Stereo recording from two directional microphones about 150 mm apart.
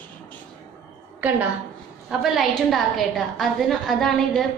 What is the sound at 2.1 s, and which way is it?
A woman's voice, centre (ahead or behind).